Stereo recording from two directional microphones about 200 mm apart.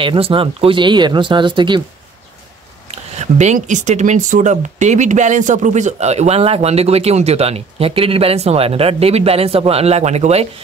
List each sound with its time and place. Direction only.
0.0 s speech: 25° right (ahead or behind)
2.9 s speech: 35° right (ahead or behind)